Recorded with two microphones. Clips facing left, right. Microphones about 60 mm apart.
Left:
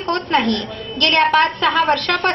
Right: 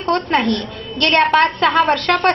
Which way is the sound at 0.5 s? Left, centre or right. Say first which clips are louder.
Even; right.